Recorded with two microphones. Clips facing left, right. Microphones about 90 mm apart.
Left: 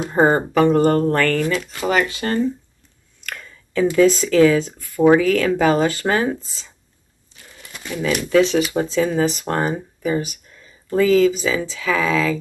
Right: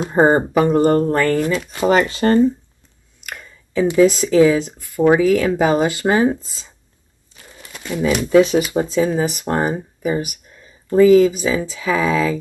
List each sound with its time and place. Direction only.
0.1 s speech: 15° right (ahead or behind)
1.9 s speech: 35° right (ahead or behind)
3.3 s speech: 15° right (ahead or behind)
7.9 s speech: 20° right (ahead or behind)